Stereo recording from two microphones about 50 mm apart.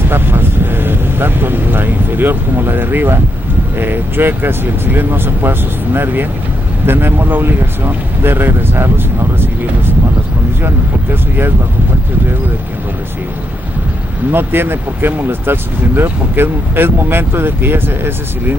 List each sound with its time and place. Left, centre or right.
0.1 s speech: right
14.3 s speech: right